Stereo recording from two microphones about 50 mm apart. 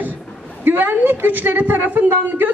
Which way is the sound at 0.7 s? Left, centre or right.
Right.